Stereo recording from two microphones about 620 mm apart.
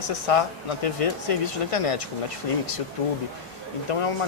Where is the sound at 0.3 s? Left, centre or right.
Left.